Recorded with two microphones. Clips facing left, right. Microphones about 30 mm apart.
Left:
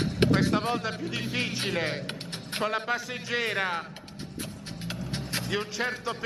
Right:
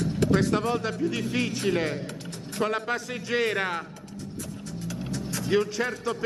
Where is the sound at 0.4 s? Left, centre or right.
Centre.